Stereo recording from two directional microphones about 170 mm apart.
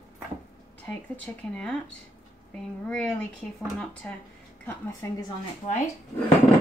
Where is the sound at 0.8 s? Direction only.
5° left (ahead or behind).